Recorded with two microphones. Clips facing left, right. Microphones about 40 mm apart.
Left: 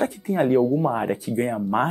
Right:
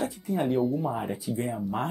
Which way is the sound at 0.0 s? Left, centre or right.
Left.